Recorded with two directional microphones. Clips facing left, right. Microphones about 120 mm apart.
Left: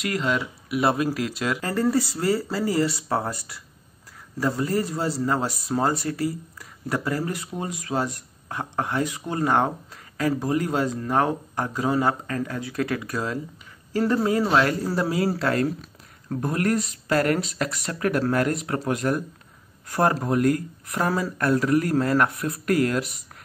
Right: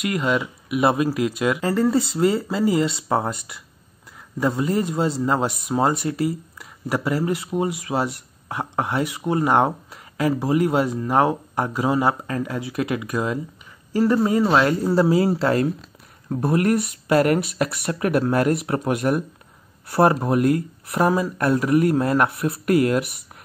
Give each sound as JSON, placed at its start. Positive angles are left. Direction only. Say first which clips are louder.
{"t": 0.1, "sound": "speech", "louder": "right 2 dB", "side_deg": -5}